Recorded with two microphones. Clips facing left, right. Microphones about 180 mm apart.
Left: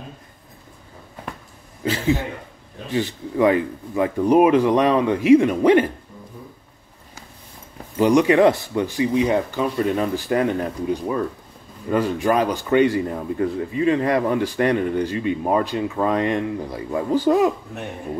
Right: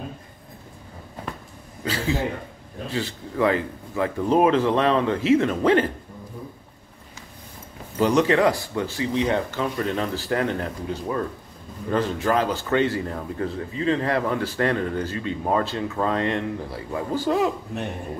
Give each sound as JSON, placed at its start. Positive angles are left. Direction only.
{"t": 1.9, "sound": "speech", "side_deg": 20}
{"t": 8.0, "sound": "speech", "side_deg": 10}